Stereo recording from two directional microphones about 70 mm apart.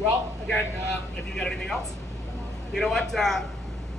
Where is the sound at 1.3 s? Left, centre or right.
Centre.